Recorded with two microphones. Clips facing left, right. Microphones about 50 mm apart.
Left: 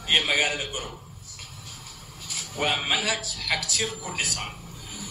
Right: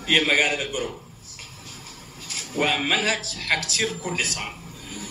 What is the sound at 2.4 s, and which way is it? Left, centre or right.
A man's voice, right.